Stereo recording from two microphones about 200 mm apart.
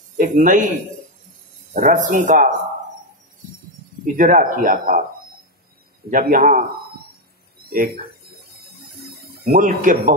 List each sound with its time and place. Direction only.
0.2 s a man's voice: 40° right (ahead or behind)
1.7 s a man's voice: 45° right (ahead or behind)
4.0 s speech: 40° right (ahead or behind)
6.0 s speech: 45° right (ahead or behind)
7.7 s speech: 50° right (ahead or behind)
9.4 s a man's voice: 45° right (ahead or behind)